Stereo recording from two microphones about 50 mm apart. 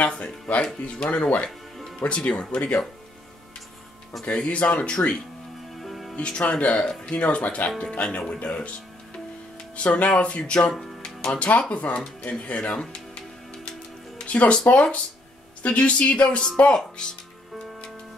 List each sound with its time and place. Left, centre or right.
0.1 s speech: left
4.2 s speech: left
5.8 s music: centre
6.1 s speech: left
10.7 s speech: centre
11.1 s speech: left
14.1 s music: left
14.7 s speech: left